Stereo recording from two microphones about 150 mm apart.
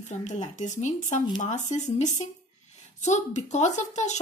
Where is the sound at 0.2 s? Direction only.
55° left (ahead or behind).